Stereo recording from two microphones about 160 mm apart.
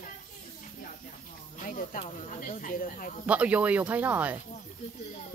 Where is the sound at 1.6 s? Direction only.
60° left (ahead or behind).